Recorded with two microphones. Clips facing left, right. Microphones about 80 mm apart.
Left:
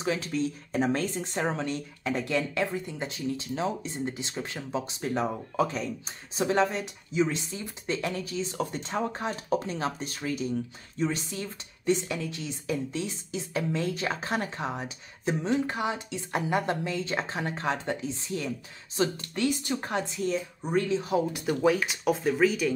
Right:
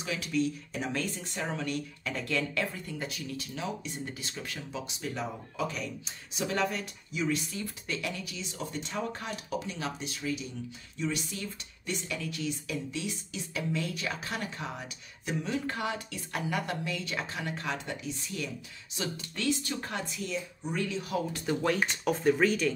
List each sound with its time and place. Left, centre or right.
0.0 s speech: left
19.3 s speech: left
20.2 s speech: left
21.3 s speech: centre